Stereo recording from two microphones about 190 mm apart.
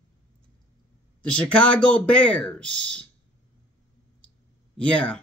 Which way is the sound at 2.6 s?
70° right (ahead or behind).